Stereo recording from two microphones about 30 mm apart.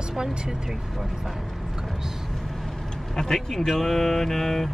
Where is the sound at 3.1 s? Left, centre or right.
Centre.